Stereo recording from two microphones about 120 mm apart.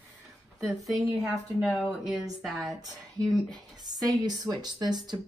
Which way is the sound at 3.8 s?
35° right (ahead or behind).